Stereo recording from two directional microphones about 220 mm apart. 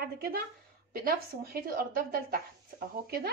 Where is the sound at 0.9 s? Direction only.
45° right (ahead or behind).